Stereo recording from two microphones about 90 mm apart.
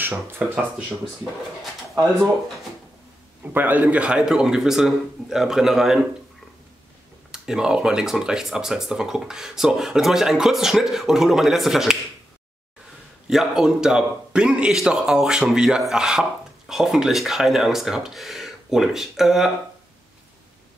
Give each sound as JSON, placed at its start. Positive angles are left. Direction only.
{"t": 0.3, "sound": "speech", "side_deg": -20}
{"t": 1.6, "sound": "speech", "side_deg": 0}
{"t": 3.5, "sound": "a man's voice", "side_deg": -20}
{"t": 7.2, "sound": "a man's voice", "side_deg": -5}
{"t": 13.3, "sound": "a man's voice", "side_deg": -5}